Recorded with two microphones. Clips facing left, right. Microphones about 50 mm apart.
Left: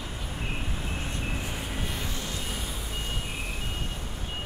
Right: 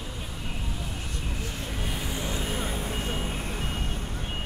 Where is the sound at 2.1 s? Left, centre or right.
Centre.